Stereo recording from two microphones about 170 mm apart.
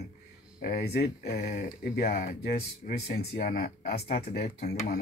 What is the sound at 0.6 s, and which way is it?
Speech, 65° left (ahead or behind).